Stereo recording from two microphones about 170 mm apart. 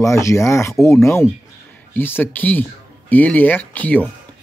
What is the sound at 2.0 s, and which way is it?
Speech, 10° left (ahead or behind).